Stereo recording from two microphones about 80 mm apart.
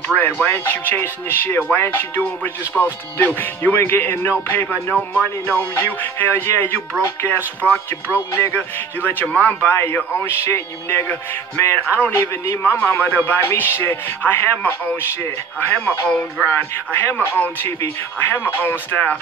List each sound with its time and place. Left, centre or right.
0.2 s a man's voice: left